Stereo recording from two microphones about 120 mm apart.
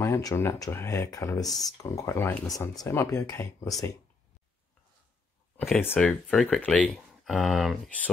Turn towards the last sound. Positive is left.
turn(degrees=0)  # may be behind; listen again after turning